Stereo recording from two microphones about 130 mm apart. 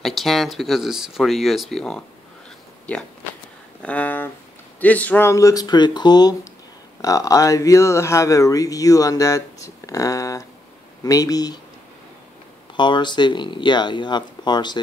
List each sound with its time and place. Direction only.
0.0 s a man's voice: centre (ahead or behind)
5.3 s speech: 25° left (ahead or behind)
12.7 s speech: 35° left (ahead or behind)